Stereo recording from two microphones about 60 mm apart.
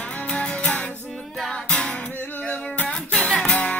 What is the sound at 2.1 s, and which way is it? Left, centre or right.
Music, left.